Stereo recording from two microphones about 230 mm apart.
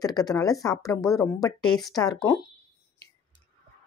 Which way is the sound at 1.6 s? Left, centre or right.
Centre.